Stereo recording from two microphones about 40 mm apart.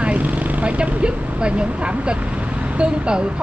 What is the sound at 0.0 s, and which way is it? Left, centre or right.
Speech, right.